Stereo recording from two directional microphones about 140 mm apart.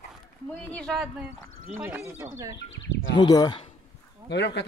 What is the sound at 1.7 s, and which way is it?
Speech, 15° right (ahead or behind).